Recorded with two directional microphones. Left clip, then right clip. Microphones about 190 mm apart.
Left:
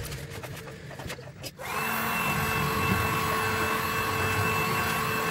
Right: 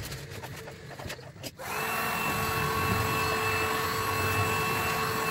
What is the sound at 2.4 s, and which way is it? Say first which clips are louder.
Vehicle: left 1 dB; 15° right (ahead or behind).